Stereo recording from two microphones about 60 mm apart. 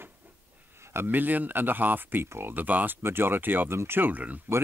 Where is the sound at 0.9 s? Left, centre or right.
Right.